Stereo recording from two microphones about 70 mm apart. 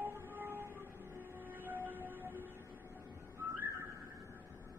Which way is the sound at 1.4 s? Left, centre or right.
Right.